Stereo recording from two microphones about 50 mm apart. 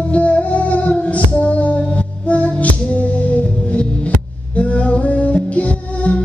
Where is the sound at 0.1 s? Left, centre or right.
Left.